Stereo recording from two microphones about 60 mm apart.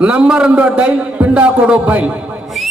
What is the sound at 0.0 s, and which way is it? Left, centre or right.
A man's voice, centre.